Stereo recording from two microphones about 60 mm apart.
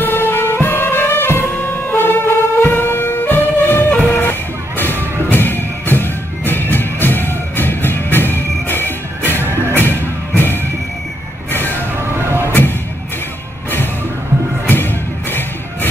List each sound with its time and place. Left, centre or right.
0.0 s music: left
9.4 s music: right
9.8 s music: left
12.0 s vehicle: right
14.7 s music: left